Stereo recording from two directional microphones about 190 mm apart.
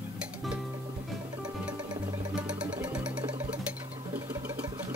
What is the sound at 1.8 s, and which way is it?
Music, 20° right (ahead or behind).